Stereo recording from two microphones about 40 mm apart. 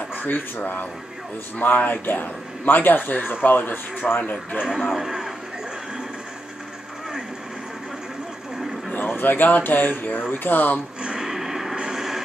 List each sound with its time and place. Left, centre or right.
0.1 s speech: left
4.2 s a man's voice: left
4.6 s speech: centre
8.9 s speech: left
11.0 s a sound: centre